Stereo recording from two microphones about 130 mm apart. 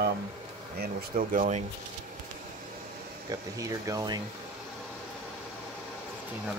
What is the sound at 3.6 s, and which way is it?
Speech, 25° right (ahead or behind).